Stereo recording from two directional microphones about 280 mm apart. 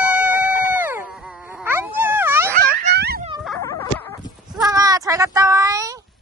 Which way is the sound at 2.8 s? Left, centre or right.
Right.